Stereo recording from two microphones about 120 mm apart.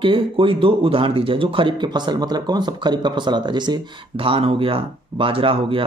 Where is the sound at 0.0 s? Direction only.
45° right (ahead or behind).